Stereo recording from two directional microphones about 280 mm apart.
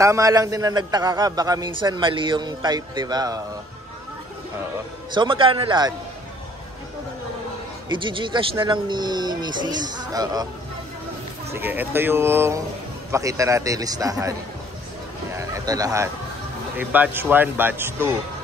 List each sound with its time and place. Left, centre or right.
0.0 s a man's voice: centre
5.1 s a man's voice: centre
7.9 s a man's voice: centre
11.5 s a man's voice: centre
15.3 s a man's voice: centre